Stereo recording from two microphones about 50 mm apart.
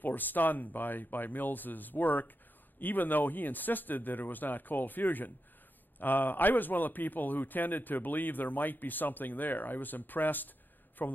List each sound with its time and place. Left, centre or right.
0.0 s a man's voice: left